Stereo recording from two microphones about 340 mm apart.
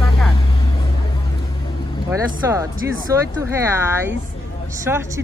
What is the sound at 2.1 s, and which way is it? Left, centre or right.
Speech, centre.